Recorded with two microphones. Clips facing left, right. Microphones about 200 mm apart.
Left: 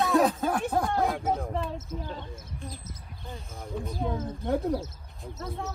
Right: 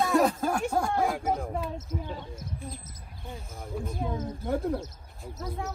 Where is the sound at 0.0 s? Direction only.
Centre (ahead or behind).